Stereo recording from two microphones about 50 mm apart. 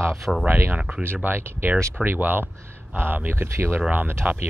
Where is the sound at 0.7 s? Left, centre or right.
Right.